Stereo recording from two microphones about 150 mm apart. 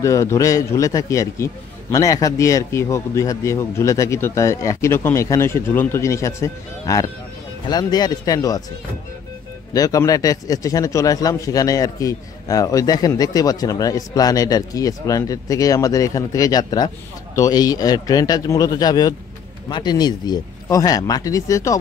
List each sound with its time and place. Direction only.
0.0 s a man's voice: 20° left (ahead or behind)
9.8 s a man's voice: 25° left (ahead or behind)